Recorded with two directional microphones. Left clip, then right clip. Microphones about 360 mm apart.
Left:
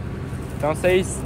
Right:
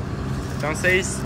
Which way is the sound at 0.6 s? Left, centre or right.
Centre.